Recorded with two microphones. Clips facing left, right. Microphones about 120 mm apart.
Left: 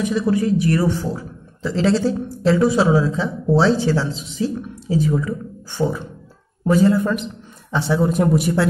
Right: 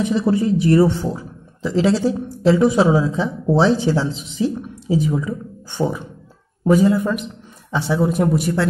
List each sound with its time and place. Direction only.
0.0 s speech: 25° right (ahead or behind); by 8.6 s 5° left (ahead or behind)